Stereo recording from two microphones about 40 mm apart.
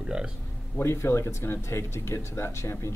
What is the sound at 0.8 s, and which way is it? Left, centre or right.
Speech, left.